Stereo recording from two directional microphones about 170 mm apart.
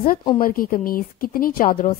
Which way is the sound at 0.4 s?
55° left (ahead or behind).